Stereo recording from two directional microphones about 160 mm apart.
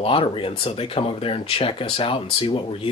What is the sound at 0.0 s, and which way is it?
Speech, 35° left (ahead or behind).